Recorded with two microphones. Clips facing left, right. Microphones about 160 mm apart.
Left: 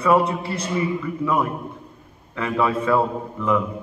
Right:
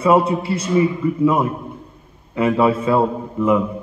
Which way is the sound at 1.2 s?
25° right (ahead or behind).